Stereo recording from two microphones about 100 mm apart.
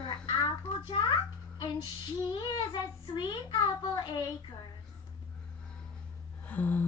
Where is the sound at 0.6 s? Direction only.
60° left (ahead or behind).